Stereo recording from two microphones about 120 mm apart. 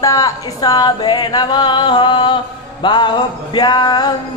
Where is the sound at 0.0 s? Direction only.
30° left (ahead or behind).